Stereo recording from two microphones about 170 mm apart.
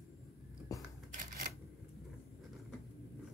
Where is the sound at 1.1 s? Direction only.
55° right (ahead or behind).